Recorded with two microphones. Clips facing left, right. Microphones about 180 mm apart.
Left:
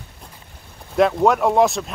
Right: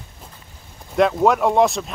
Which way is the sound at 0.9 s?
Centre (ahead or behind).